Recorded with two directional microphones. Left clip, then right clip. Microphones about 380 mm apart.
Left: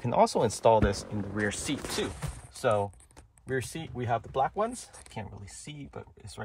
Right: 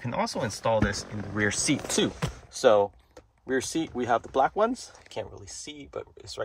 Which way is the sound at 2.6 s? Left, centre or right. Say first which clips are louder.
Right 7 dB; right.